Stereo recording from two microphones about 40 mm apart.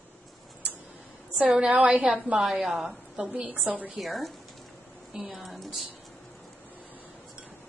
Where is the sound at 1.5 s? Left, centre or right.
Centre.